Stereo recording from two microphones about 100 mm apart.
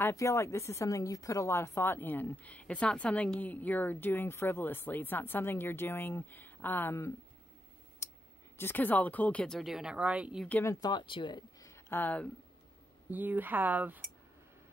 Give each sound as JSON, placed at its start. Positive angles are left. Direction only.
{"t": 0.1, "sound": "speech", "side_deg": 30}
{"t": 8.0, "sound": "clicking", "side_deg": 30}
{"t": 8.5, "sound": "speech", "side_deg": 20}
{"t": 9.6, "sound": "speech", "side_deg": -5}
{"t": 10.6, "sound": "speech", "side_deg": 30}
{"t": 10.9, "sound": "speech", "side_deg": 55}
{"t": 11.6, "sound": "a sound", "side_deg": 30}
{"t": 12.0, "sound": "speech", "side_deg": 15}
{"t": 13.1, "sound": "speech", "side_deg": -15}